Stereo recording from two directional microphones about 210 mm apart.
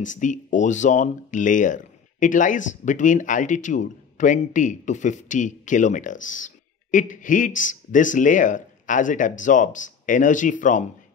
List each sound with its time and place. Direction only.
0.0 s speech: 35° left (ahead or behind)